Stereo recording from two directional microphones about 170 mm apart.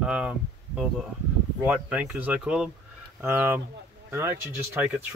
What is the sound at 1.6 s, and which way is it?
Speech, 10° right (ahead or behind).